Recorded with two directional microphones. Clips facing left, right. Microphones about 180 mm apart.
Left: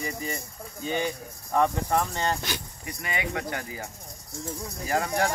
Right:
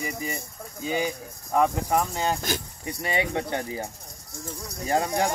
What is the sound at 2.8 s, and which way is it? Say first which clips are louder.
Speech: right 5 dB; 30° right (ahead or behind).